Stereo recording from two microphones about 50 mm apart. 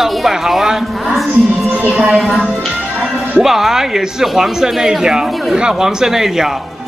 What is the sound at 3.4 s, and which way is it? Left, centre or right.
Speech, centre.